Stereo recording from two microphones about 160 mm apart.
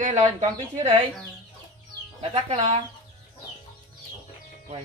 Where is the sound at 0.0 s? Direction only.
50° right (ahead or behind).